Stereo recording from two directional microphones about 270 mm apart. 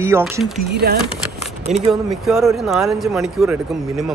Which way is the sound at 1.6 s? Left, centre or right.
Right.